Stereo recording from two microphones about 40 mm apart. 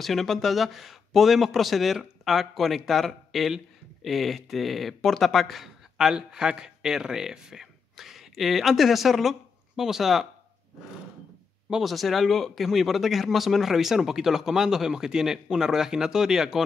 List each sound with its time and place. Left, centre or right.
0.0 s a man's voice: centre
11.8 s speech: centre